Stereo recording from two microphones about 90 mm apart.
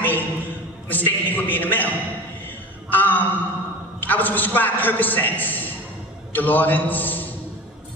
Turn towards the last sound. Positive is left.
turn(degrees=20)  # may be behind; listen again after turning